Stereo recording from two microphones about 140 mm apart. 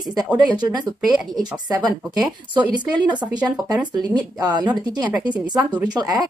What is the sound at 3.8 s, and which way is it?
Speech, 30° right (ahead or behind).